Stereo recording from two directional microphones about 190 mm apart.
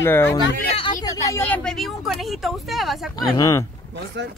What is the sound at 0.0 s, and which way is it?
Speech, 10° left (ahead or behind).